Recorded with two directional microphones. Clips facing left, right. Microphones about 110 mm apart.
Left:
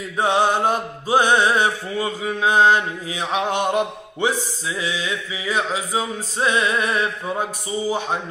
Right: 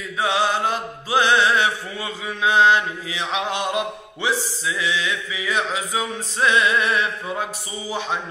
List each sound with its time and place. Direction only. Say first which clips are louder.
0.2 s mantra: left 3 dB; 50° left (ahead or behind)
1.1 s music: left 1 dB; 45° left (ahead or behind)